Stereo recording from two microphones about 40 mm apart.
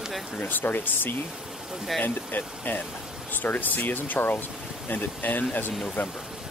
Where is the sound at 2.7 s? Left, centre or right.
Left.